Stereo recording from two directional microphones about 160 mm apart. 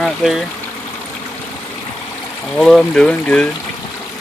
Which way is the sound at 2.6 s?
5° left (ahead or behind).